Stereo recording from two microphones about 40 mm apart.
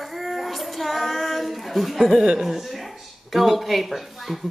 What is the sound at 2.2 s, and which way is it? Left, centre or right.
Speech, centre.